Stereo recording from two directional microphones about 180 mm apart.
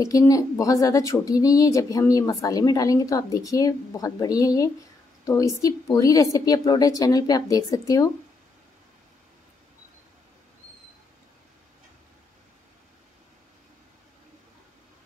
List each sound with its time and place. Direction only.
0.0 s speech: 20° left (ahead or behind)